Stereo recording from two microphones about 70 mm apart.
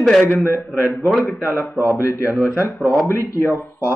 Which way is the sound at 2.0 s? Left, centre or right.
Left.